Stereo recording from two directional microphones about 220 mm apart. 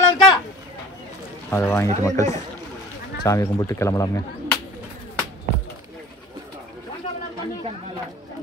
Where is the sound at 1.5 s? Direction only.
10° left (ahead or behind).